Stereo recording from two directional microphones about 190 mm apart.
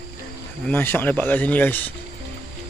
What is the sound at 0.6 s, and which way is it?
Speech, 10° left (ahead or behind).